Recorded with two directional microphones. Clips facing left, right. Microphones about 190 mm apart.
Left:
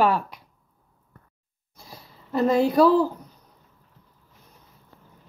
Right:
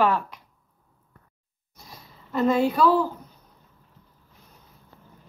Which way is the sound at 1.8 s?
35° left (ahead or behind).